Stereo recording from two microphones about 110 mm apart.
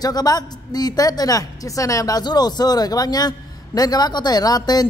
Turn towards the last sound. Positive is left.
turn(degrees=35)  # may be behind; listen again after turning